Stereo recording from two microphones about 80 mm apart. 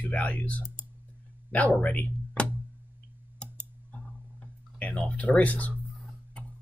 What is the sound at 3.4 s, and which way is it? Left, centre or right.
Clicking, centre.